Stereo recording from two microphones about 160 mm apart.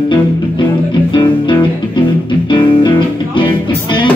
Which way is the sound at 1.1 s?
30° left (ahead or behind).